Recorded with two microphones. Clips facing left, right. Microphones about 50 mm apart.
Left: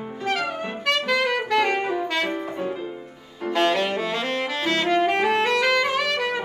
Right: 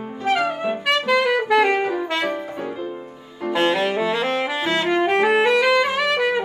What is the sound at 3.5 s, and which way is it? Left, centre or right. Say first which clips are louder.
Saxophone: right 2 dB; centre.